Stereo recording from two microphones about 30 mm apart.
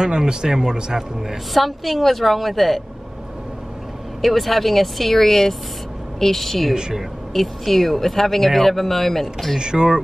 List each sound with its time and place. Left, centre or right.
0.0 s speech: right
1.5 s a woman's voice: centre
4.2 s a woman's voice: centre
6.7 s speech: right
7.3 s a woman's voice: centre
9.6 s speech: right